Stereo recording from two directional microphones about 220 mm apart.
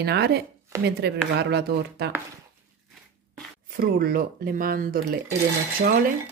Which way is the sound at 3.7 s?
45° right (ahead or behind).